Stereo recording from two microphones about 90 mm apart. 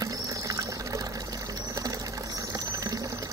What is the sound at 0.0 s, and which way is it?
Rodents, 40° right (ahead or behind).